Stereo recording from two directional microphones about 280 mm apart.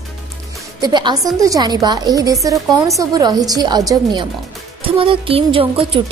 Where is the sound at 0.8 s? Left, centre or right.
Centre.